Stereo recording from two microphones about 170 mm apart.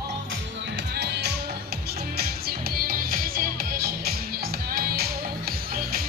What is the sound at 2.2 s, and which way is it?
Music, 65° right (ahead or behind).